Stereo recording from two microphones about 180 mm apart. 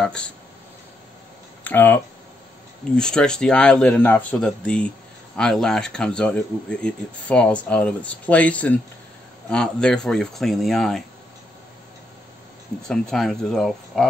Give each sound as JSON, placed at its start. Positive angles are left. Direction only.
{"t": 0.0, "sound": "speech", "side_deg": 5}
{"t": 1.6, "sound": "speech", "side_deg": 10}
{"t": 3.0, "sound": "speech", "side_deg": 5}
{"t": 12.8, "sound": "speech", "side_deg": 5}